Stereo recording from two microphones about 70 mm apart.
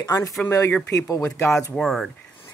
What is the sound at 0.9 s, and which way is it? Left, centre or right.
Speech, left.